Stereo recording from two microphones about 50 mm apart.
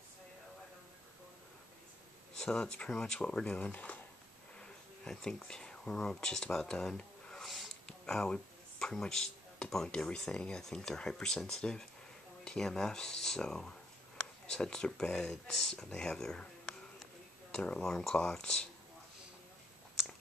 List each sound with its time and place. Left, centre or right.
2.3 s a sound: centre
2.9 s speech: centre; by 4.0 s left
4.6 s sniff: centre
5.5 s speech: centre
7.4 s a sound: centre
9.8 s speech: centre
17.5 s speech: centre
17.8 s speech: centre